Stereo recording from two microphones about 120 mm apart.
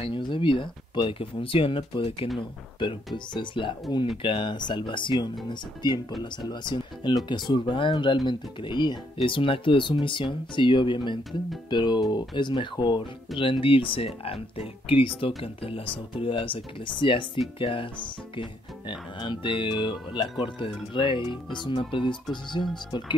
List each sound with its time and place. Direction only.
0.0 s speech: 45° left (ahead or behind)